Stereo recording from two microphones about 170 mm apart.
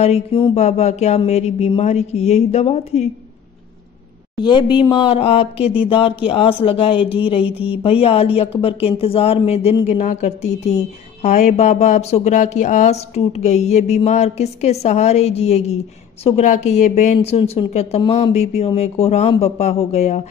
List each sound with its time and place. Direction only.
0.0 s speech: 35° left (ahead or behind)
4.4 s a woman's voice: 25° left (ahead or behind)
7.4 s speech: 10° right (ahead or behind)
7.7 s speech: 35° left (ahead or behind)